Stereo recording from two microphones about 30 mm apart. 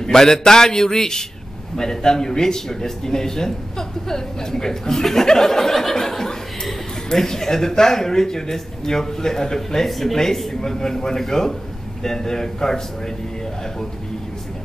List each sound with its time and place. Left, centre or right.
0.0 s speech: centre
9.8 s speech: centre
10.1 s speech: centre